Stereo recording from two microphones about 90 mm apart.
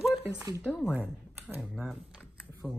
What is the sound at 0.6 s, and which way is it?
Speech, 20° left (ahead or behind).